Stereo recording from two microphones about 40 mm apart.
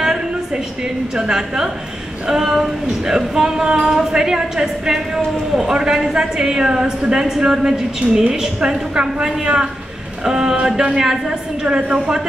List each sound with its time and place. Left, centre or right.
1.1 s a woman's voice: centre